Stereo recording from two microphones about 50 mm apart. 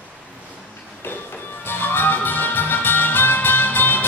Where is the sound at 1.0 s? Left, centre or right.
Left.